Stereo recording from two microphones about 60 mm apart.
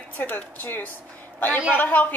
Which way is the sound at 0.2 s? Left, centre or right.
Left.